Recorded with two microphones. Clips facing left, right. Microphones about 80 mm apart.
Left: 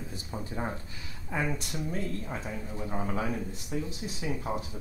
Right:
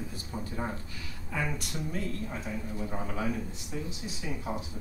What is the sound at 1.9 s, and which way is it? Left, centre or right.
Speech, left.